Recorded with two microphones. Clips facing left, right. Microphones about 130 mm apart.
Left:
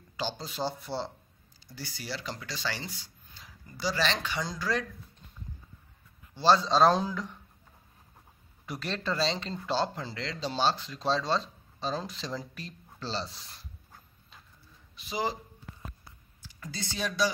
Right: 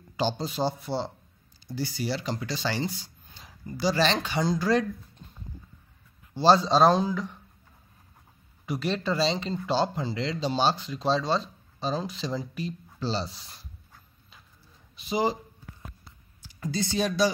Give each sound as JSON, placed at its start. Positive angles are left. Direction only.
{"t": 0.2, "sound": "speech", "side_deg": -25}
{"t": 0.7, "sound": "speech", "side_deg": -5}
{"t": 1.8, "sound": "speech", "side_deg": -20}
{"t": 6.3, "sound": "speech", "side_deg": -30}
{"t": 6.6, "sound": "speech", "side_deg": -10}
{"t": 8.6, "sound": "speech", "side_deg": -5}
{"t": 15.0, "sound": "speech", "side_deg": -20}
{"t": 16.5, "sound": "a sound", "side_deg": -35}